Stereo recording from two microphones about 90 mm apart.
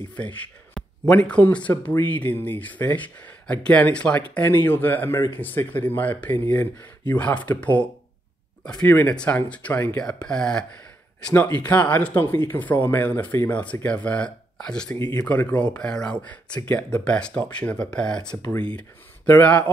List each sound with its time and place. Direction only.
0.1 s speech: 15° left (ahead or behind)
10.0 s speech: 10° left (ahead or behind)
11.6 s speech: 15° left (ahead or behind)